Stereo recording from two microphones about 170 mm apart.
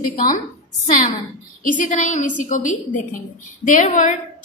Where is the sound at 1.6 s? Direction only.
50° left (ahead or behind).